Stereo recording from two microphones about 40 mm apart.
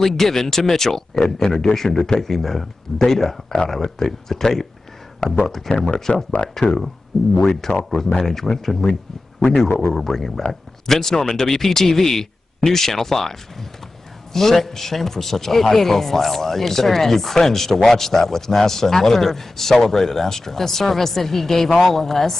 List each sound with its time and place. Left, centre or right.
0.0 s a man's voice: centre
5.8 s a man's voice: centre
9.4 s speech: left
9.9 s a man's voice: centre